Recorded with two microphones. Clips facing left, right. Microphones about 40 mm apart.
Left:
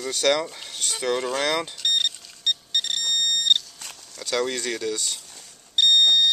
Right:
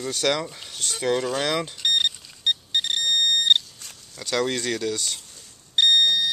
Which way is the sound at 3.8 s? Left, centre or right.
Left.